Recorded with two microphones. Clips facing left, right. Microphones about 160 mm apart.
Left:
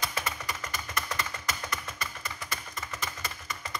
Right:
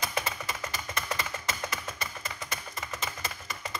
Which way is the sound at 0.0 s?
20° right (ahead or behind).